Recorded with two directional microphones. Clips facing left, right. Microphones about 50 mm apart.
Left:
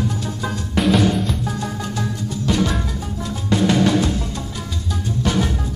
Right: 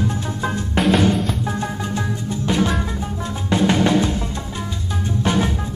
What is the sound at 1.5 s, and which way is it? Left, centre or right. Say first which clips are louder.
Music: right 2 dB; right.